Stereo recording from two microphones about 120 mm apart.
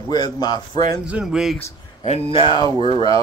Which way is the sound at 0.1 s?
35° left (ahead or behind).